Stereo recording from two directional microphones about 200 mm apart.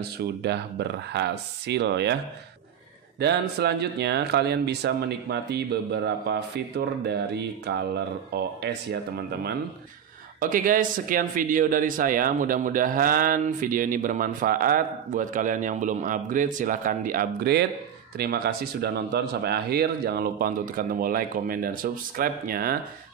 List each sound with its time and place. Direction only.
0.2 s speech: 55° right (ahead or behind)
3.2 s speech: 55° right (ahead or behind)
10.4 s a man's voice: 45° right (ahead or behind)